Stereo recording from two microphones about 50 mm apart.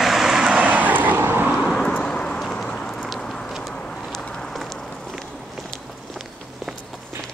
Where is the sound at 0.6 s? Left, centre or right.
Right.